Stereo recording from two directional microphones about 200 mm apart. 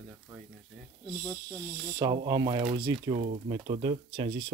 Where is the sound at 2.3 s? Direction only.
20° right (ahead or behind).